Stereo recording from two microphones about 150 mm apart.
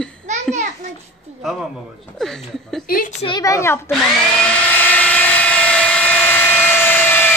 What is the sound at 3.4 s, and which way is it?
Speech, 20° left (ahead or behind).